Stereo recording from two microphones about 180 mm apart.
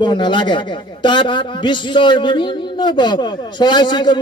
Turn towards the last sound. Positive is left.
turn(degrees=25)  # may be behind; listen again after turning